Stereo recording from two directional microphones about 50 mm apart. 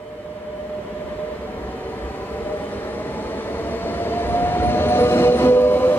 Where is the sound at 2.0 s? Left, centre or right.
Left.